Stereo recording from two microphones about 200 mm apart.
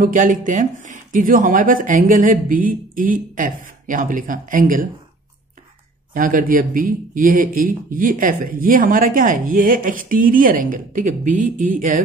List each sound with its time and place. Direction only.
0.0 s a man's voice: 40° right (ahead or behind)
6.1 s a man's voice: 45° right (ahead or behind)